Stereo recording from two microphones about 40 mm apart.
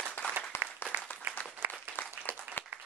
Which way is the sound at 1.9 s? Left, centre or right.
Left.